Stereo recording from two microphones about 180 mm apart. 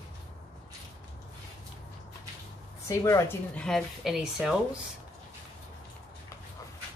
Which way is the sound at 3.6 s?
5° left (ahead or behind).